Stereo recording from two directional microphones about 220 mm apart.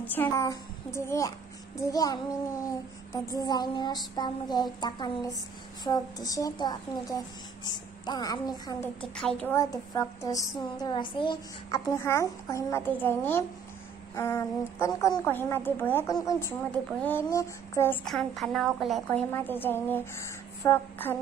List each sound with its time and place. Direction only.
0.1 s a woman's voice: 10° left (ahead or behind)
3.3 s child singing: 15° left (ahead or behind)
5.9 s a woman's voice: 15° left (ahead or behind)
9.0 s a woman's voice: 5° left (ahead or behind)